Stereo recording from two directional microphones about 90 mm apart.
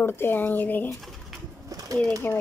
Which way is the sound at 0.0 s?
25° left (ahead or behind).